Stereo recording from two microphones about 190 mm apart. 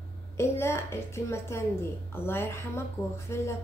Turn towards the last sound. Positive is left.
turn(degrees=15)  # may be behind; listen again after turning